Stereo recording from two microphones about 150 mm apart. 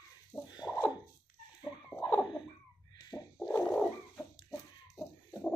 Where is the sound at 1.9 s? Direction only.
10° left (ahead or behind).